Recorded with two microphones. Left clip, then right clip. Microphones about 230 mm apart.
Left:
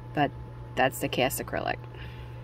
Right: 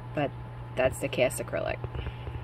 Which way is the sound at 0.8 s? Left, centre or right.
Left.